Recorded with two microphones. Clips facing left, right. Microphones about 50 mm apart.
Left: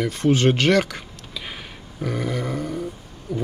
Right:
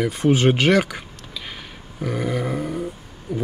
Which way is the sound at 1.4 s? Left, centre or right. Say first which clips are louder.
Left 1 dB; centre.